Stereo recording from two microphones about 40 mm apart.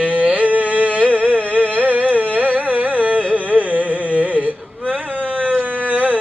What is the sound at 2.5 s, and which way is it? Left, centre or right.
Carnatic music, right.